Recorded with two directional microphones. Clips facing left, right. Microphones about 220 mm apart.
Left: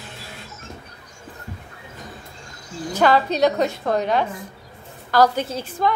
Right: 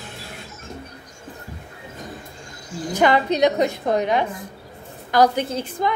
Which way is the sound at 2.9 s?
20° right (ahead or behind).